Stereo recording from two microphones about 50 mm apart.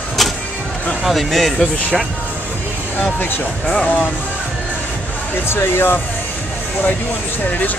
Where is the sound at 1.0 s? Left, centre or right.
Centre.